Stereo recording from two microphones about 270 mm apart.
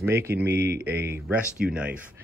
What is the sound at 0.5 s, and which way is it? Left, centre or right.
Speech, right.